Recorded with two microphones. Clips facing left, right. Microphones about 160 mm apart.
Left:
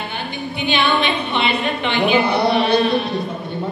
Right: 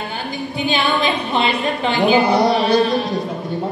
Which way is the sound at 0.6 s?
35° right (ahead or behind).